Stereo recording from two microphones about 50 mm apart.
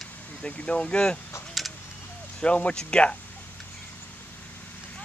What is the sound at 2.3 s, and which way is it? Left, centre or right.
Speech, left.